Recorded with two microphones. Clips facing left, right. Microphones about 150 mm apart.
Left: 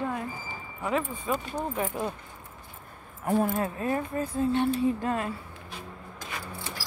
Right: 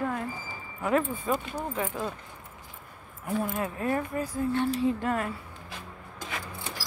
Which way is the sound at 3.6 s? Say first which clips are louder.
Even; 25° left (ahead or behind).